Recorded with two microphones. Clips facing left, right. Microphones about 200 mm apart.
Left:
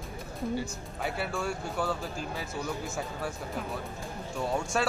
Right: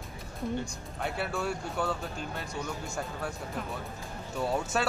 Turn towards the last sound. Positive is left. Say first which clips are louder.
# even
turn(degrees=0)  # may be behind; listen again after turning